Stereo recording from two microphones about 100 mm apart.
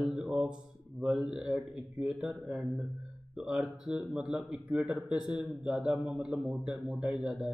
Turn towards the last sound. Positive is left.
turn(degrees=-10)  # may be behind; listen again after turning